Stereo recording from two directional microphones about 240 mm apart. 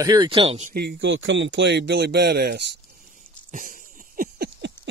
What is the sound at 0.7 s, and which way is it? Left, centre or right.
Speech, right.